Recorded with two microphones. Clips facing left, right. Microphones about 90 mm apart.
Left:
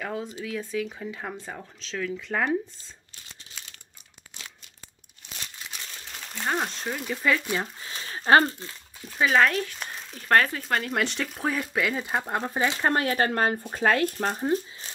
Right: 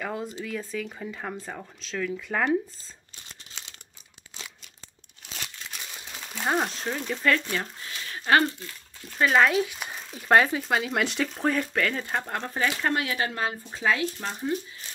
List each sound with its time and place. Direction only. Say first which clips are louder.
0.0 s speech: even; centre (ahead or behind)
5.8 s speech: right 1 dB; 10° right (ahead or behind); by 7.4 s 5° left (ahead or behind)
7.4 s speech: left 2 dB; 15° left (ahead or behind)
7.9 s a sound: left 3 dB; 30° left (ahead or behind)
9.0 s speech: even; centre (ahead or behind); by 12.9 s 20° left (ahead or behind)
12.9 s speech: left 4 dB; 45° left (ahead or behind)